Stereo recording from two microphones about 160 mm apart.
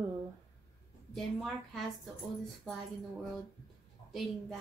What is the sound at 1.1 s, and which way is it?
Speech, centre (ahead or behind).